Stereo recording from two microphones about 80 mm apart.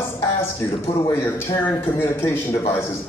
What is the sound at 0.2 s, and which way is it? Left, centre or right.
A man's voice, left.